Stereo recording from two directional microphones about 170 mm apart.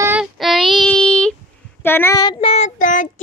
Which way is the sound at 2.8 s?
50° left (ahead or behind).